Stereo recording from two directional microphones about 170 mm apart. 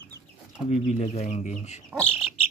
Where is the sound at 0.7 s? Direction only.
40° left (ahead or behind).